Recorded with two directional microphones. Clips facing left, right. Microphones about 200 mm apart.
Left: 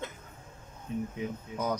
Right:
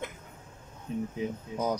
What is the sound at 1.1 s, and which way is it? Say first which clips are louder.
Speech: right 2 dB; 25° right (ahead or behind).